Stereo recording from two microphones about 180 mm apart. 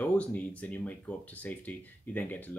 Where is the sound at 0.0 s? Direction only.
10° left (ahead or behind).